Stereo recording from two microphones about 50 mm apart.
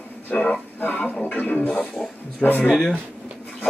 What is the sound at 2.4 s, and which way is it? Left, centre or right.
Speech, centre.